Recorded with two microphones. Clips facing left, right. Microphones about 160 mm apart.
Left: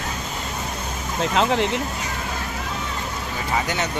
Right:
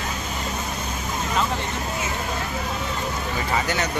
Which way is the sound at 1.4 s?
90° left.